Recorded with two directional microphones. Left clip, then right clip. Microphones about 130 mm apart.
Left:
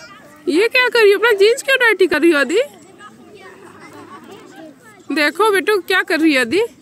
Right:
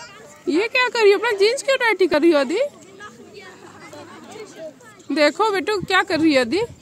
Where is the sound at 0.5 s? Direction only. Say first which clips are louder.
Left 5 dB; 5° right (ahead or behind).